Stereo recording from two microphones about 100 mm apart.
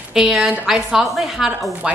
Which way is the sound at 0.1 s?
5° right (ahead or behind).